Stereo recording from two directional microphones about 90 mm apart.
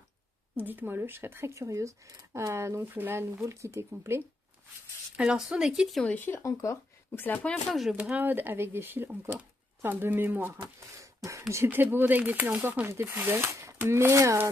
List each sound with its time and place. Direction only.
0.6 s speech: 20° right (ahead or behind)
2.8 s speech: 20° right (ahead or behind)
3.4 s speech: 35° right (ahead or behind)
5.1 s speech: 10° right (ahead or behind)
6.0 s speech: 20° left (ahead or behind)
6.4 s speech: 40° left (ahead or behind)
7.1 s speech: 25° left (ahead or behind)
7.4 s speech: centre (ahead or behind)
7.9 s speech: 20° right (ahead or behind)
11.2 s speech: 35° right (ahead or behind)
11.7 s speech: 20° right (ahead or behind)